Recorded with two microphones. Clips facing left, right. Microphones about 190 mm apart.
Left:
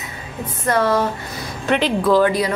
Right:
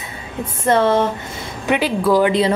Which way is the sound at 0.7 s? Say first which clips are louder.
Right 3 dB; 25° right (ahead or behind).